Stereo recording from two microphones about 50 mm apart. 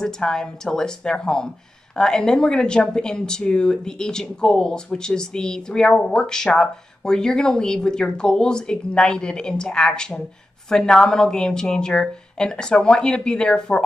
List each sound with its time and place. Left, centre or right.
0.0 s a woman's voice: centre